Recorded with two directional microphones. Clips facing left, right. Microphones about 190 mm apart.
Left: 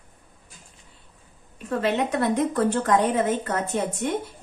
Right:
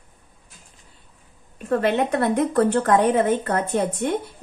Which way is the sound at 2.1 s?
60° right (ahead or behind).